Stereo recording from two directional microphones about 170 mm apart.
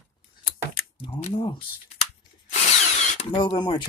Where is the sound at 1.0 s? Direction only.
30° left (ahead or behind).